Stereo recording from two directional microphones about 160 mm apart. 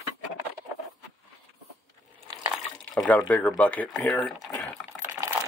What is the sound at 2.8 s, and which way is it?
Water, 5° left (ahead or behind).